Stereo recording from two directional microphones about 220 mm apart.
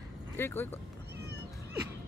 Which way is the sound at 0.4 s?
10° left (ahead or behind).